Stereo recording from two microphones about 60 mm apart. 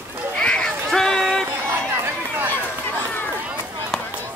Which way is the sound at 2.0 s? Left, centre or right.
Right.